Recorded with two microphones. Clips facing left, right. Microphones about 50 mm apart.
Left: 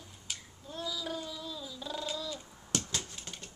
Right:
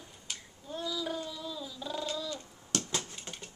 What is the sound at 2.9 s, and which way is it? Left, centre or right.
Computer keyboard, centre.